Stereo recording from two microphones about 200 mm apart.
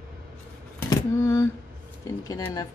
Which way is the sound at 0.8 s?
15° left (ahead or behind).